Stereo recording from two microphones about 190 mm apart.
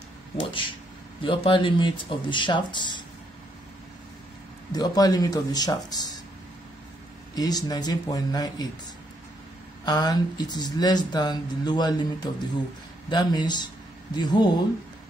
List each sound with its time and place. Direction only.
0.4 s speech: 25° left (ahead or behind)
4.7 s speech: 20° left (ahead or behind)
7.3 s speech: 20° left (ahead or behind)
9.8 s speech: 20° left (ahead or behind)